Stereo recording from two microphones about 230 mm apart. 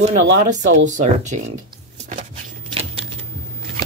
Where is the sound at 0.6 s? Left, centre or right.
Right.